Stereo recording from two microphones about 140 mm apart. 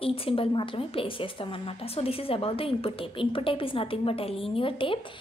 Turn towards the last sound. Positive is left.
turn(degrees=40)  # may be behind; listen again after turning